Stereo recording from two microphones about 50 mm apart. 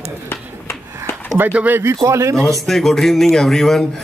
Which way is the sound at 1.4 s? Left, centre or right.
Right.